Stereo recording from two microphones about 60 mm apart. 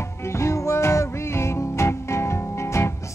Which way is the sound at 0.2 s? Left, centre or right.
Left.